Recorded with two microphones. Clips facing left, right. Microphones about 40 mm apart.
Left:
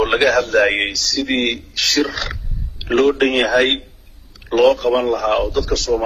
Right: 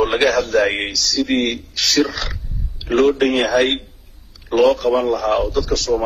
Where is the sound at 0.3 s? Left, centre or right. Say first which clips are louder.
Left 2 dB; left.